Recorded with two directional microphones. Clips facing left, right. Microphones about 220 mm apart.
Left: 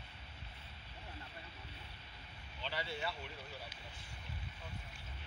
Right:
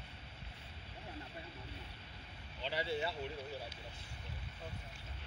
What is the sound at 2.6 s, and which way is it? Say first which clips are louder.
Speech: right 4 dB; 20° right (ahead or behind).